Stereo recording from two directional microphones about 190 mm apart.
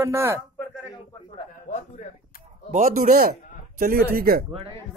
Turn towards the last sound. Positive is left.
turn(degrees=-50)  # may be behind; listen again after turning